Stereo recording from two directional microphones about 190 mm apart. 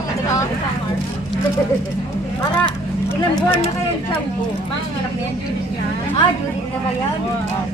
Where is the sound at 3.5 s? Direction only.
35° left (ahead or behind).